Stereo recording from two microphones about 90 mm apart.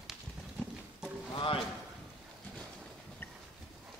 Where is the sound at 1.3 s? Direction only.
75° left (ahead or behind).